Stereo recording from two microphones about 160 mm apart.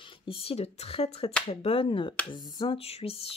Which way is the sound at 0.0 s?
30° left (ahead or behind).